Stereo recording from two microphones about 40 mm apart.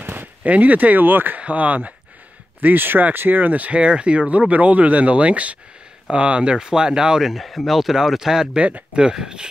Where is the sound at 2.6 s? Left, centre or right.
Right.